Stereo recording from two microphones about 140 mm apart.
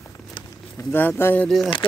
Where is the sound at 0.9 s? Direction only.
15° left (ahead or behind).